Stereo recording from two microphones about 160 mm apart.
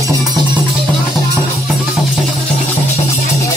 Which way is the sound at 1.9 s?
10° left (ahead or behind).